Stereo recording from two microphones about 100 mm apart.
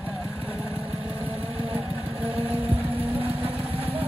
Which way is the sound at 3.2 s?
70° right (ahead or behind).